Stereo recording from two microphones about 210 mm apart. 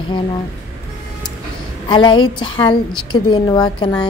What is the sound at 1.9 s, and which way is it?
A woman's voice, 20° left (ahead or behind).